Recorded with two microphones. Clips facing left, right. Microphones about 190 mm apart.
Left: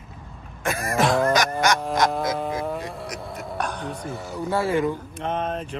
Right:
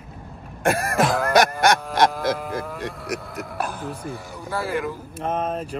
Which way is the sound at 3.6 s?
5° right (ahead or behind).